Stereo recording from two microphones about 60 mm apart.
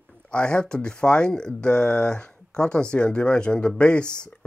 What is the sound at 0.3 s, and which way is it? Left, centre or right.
Speech, centre.